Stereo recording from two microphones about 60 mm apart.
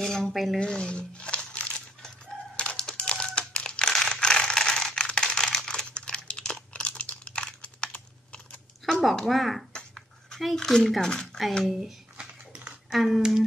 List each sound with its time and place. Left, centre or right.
0.0 s speech: centre
0.6 s speech: centre
1.5 s crumpling: centre
2.5 s a sound: centre
2.9 s crushing: centre
3.9 s computer keyboard: centre
9.3 s speech: centre
9.7 s a sound: centre
10.4 s speech: centre
11.6 s a sound: centre
12.9 s speech: centre